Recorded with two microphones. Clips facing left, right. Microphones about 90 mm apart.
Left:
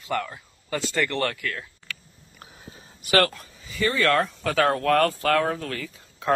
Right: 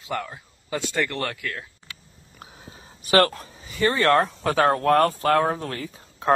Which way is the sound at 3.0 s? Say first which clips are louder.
Right 2 dB; 30° right (ahead or behind).